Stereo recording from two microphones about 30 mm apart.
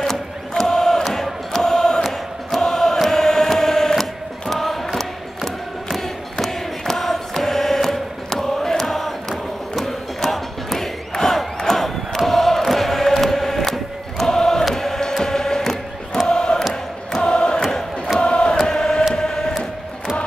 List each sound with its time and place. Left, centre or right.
0.0 s chant: centre
2.0 s choir: centre
2.6 s chant: centre
3.0 s choir: centre
9.8 s battle cry: centre
12.3 s chant: centre
13.7 s a sound: centre
14.8 s music: centre
16.3 s choir: left
17.3 s music: left
18.2 s chant: left
18.6 s chant: centre